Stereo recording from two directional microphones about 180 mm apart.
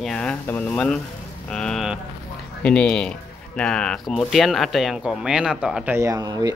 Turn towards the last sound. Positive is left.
turn(degrees=-20)  # may be behind; listen again after turning